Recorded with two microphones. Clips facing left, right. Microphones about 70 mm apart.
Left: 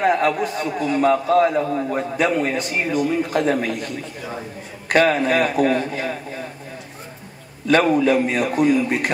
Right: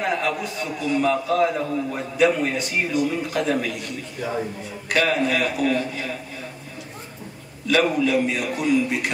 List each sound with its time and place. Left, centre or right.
0.0 s a man's voice: left
7.6 s a man's voice: left